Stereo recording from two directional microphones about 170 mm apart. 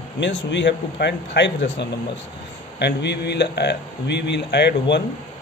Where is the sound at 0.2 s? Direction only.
90° left.